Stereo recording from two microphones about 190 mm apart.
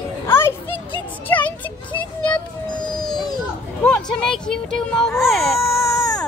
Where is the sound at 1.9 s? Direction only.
25° left (ahead or behind).